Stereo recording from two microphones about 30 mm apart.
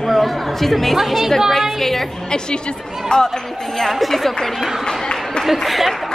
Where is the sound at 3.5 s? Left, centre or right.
Centre.